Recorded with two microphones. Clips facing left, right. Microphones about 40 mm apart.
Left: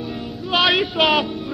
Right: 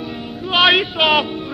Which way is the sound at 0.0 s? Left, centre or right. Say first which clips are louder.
Right 1 dB; centre.